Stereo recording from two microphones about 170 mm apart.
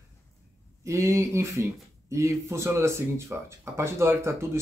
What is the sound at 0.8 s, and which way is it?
Speech, 15° right (ahead or behind).